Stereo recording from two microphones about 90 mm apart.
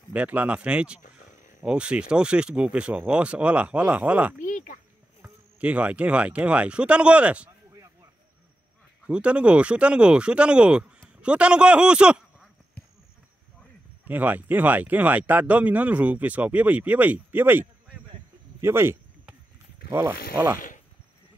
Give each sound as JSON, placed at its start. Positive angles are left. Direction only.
{"t": 0.1, "sound": "speech", "side_deg": -15}
{"t": 9.0, "sound": "speech", "side_deg": -10}
{"t": 14.0, "sound": "speech", "side_deg": -20}
{"t": 20.0, "sound": "speech", "side_deg": -20}